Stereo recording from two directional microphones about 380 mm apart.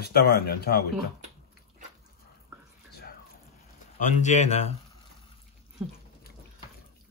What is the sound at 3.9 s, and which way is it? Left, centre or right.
Speech, centre.